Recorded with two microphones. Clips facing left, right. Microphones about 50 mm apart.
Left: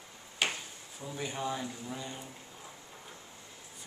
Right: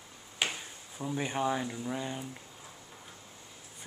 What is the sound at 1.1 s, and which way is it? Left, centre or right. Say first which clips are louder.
Speech: right 5 dB; right.